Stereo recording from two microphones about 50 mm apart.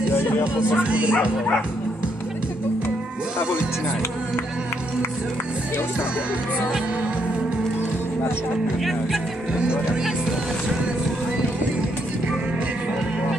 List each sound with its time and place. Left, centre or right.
0.1 s music: left
0.4 s music: right